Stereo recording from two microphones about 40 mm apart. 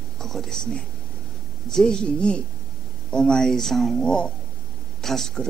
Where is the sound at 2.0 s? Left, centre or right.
Left.